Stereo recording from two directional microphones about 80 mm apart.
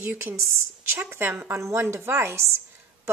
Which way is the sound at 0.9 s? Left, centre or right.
Right.